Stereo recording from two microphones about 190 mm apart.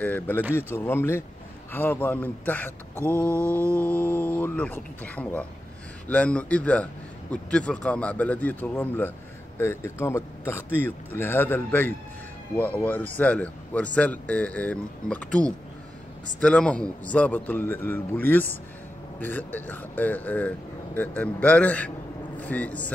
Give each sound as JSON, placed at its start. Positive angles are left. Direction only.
{"t": 0.0, "sound": "a man's voice", "side_deg": 10}